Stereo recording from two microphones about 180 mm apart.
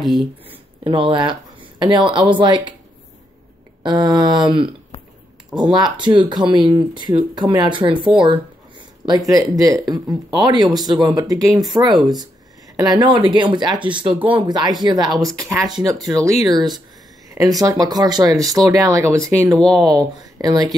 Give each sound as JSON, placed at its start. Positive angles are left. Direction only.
{"t": 0.0, "sound": "speech", "side_deg": 0}
{"t": 0.8, "sound": "speech", "side_deg": -30}
{"t": 3.8, "sound": "speech", "side_deg": -25}
{"t": 5.5, "sound": "speech", "side_deg": -25}
{"t": 8.2, "sound": "a sound", "side_deg": -25}
{"t": 9.3, "sound": "speech", "side_deg": -20}
{"t": 16.0, "sound": "speech", "side_deg": 0}
{"t": 16.4, "sound": "speech", "side_deg": -25}
{"t": 19.6, "sound": "speech", "side_deg": 5}
{"t": 20.0, "sound": "speech", "side_deg": -20}